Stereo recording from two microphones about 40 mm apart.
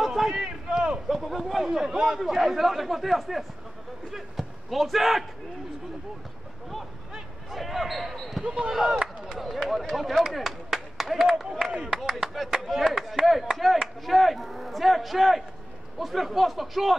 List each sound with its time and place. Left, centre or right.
0.0 s a sound: centre
0.3 s a man's voice: centre
1.0 s speech: centre
2.1 s speech: centre
7.5 s basketball bounce: centre
8.5 s speech: centre